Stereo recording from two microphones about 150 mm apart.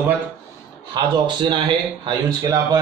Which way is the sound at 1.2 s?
30° right (ahead or behind).